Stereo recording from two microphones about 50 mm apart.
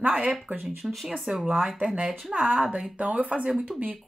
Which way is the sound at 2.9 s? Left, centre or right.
Right.